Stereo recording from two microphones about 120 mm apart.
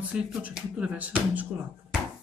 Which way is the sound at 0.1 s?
10° right (ahead or behind).